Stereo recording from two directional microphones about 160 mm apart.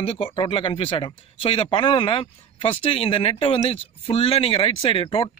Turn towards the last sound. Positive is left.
turn(degrees=35)  # may be behind; listen again after turning